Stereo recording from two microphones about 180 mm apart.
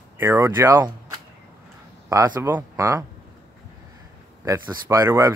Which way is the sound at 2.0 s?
15° right (ahead or behind).